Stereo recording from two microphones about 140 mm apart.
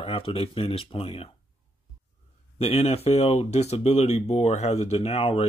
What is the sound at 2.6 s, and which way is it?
Speech, 45° left (ahead or behind).